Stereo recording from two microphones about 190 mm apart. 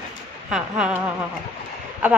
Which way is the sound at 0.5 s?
5° right (ahead or behind).